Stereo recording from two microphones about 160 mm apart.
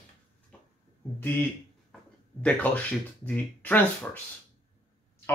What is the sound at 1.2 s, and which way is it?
Speech, 10° left (ahead or behind).